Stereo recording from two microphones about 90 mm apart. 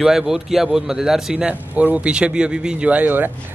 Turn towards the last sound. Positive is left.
turn(degrees=-20)  # may be behind; listen again after turning